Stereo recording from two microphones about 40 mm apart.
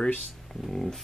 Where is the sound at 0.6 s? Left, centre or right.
Centre.